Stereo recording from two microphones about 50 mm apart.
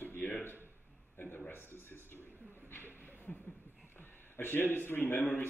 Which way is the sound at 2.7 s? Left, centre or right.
Left.